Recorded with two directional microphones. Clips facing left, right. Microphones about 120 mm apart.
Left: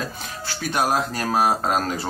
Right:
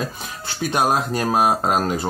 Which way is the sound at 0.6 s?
20° right (ahead or behind).